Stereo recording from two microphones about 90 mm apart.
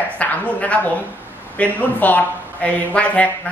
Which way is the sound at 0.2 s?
15° left (ahead or behind).